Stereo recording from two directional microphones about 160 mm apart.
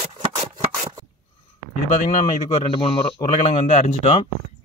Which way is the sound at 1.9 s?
55° left (ahead or behind).